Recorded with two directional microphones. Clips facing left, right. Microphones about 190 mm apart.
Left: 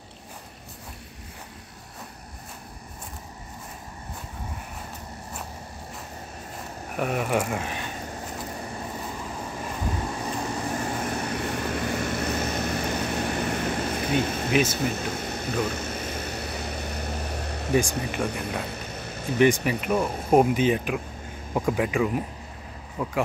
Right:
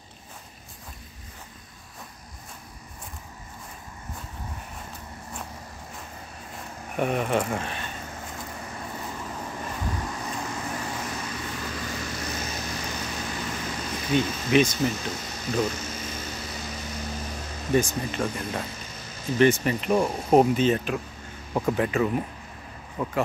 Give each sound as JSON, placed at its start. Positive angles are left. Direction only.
{"t": 7.0, "sound": "speech", "side_deg": 5}
{"t": 8.9, "sound": "vehicle", "side_deg": 10}
{"t": 9.9, "sound": "vehicle", "side_deg": 30}
{"t": 11.1, "sound": "vehicle", "side_deg": 60}
{"t": 13.7, "sound": "a sound", "side_deg": 55}
{"t": 14.5, "sound": "speech", "side_deg": 5}
{"t": 14.9, "sound": "speech", "side_deg": 60}
{"t": 15.7, "sound": "vehicle", "side_deg": 60}
{"t": 18.2, "sound": "speech", "side_deg": 65}
{"t": 18.7, "sound": "a sound", "side_deg": 60}
{"t": 19.3, "sound": "speech", "side_deg": 15}